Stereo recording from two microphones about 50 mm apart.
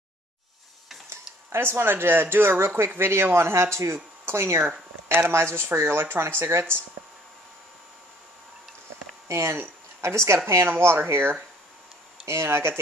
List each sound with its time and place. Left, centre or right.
1.5 s speech: right
9.3 s speech: right